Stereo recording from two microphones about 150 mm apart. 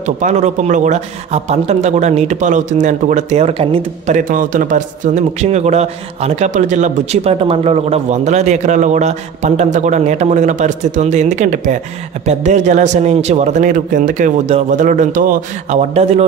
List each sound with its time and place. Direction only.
0.0 s a man's voice: 55° right (ahead or behind)
4.1 s a man's voice: 60° right (ahead or behind); by 16.3 s 45° right (ahead or behind)